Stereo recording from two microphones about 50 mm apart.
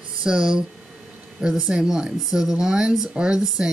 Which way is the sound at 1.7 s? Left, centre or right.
Centre.